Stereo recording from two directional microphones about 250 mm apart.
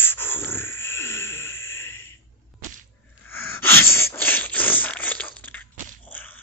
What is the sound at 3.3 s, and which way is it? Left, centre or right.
Sneeze, centre.